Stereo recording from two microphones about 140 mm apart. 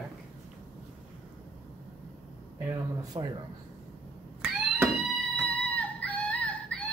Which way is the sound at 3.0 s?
30° right (ahead or behind).